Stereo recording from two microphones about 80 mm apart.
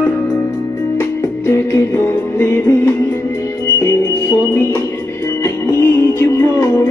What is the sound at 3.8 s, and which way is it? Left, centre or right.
Music, left.